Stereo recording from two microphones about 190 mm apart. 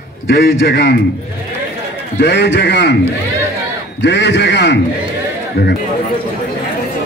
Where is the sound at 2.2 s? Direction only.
65° left (ahead or behind).